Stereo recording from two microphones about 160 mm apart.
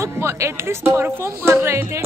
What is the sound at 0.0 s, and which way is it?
Speech, 15° right (ahead or behind).